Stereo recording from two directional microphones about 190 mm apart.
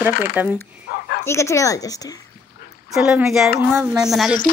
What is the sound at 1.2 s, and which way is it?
Speech, 15° left (ahead or behind).